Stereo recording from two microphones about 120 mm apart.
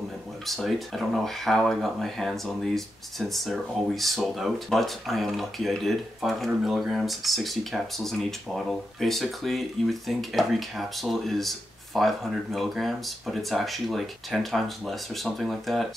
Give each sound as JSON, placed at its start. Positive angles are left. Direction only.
{"t": 0.5, "sound": "speech", "side_deg": 0}